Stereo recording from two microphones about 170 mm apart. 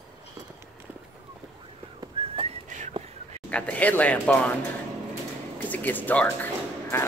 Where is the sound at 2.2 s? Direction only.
30° right (ahead or behind).